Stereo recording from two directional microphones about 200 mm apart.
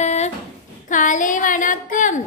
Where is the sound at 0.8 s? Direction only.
40° left (ahead or behind).